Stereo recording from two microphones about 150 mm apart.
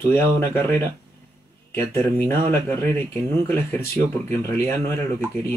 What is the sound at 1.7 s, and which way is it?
Speech, 15° left (ahead or behind).